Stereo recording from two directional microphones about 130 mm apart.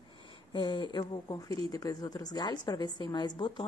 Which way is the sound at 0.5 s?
40° left (ahead or behind).